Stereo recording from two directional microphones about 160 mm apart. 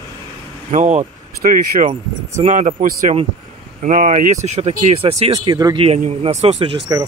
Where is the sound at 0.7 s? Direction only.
45° right (ahead or behind).